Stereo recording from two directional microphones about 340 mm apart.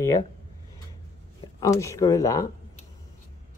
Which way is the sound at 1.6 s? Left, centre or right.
Centre.